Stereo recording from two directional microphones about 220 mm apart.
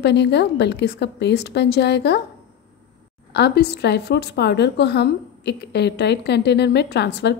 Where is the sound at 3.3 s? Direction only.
50° left (ahead or behind).